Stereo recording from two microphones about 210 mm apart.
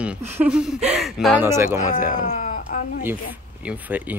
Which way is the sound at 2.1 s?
35° left (ahead or behind).